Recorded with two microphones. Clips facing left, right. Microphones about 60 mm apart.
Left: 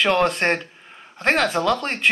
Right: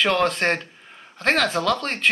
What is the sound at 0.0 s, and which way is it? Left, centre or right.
Speech, centre.